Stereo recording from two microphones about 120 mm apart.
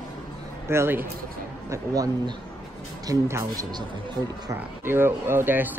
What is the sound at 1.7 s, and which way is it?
A man's voice, 30° right (ahead or behind).